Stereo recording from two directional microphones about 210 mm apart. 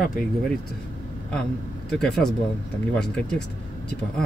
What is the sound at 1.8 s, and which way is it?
Speech, centre (ahead or behind).